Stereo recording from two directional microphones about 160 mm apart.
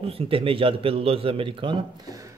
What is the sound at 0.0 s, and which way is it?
A man's voice, 35° right (ahead or behind).